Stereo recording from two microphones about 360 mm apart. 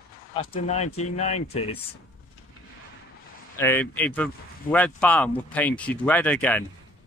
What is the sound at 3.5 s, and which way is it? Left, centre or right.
Speech, centre.